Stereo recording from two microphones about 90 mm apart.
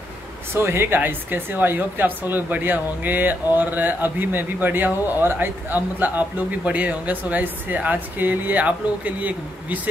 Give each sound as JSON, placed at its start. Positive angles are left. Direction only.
{"t": 0.6, "sound": "a woman's voice", "side_deg": -25}